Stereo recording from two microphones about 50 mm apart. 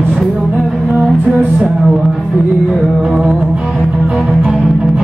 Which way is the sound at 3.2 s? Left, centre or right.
Right.